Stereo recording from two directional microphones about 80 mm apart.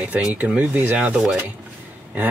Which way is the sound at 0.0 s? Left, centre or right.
Centre.